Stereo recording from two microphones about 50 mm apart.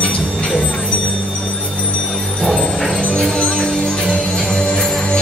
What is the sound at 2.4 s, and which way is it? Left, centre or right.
Music, centre.